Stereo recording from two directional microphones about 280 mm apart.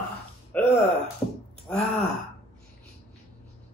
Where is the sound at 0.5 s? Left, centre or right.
Centre.